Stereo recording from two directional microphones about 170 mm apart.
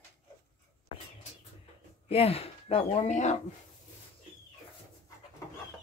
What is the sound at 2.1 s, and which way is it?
Speech, 35° left (ahead or behind).